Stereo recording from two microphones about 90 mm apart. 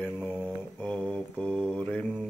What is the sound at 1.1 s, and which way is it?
Mantra, 10° left (ahead or behind).